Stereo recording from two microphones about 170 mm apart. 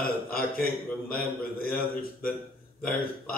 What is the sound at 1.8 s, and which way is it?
Speech, 60° left (ahead or behind).